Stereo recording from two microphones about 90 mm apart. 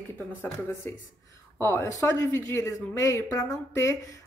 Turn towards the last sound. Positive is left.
turn(degrees=30)  # may be behind; listen again after turning